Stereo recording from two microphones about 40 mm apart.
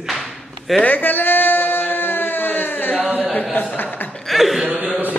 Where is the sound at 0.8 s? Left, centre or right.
Left.